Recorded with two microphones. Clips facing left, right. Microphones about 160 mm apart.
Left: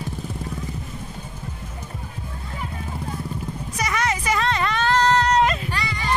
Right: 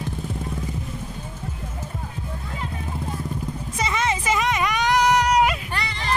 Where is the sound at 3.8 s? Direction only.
25° right (ahead or behind).